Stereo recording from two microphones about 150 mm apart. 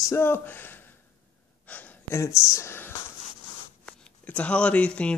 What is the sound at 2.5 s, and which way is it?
Speech, 20° left (ahead or behind).